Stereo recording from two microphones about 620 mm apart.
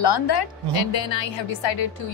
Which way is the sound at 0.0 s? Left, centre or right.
Left.